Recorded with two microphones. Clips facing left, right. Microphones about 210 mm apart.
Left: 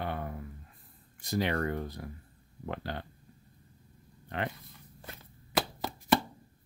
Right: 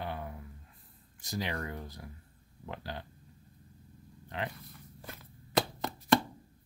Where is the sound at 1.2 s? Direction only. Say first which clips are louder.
Left 6 dB; 60° left (ahead or behind).